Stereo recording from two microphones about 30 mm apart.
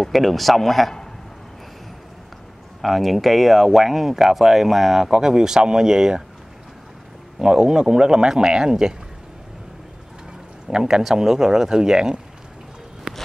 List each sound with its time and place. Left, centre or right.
0.0 s speech: centre
2.8 s speech: centre
5.1 s speech: right
7.3 s speech: right
10.7 s speech: right
13.1 s a sound: right